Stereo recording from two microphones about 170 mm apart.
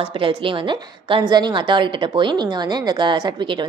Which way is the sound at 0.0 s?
30° right (ahead or behind).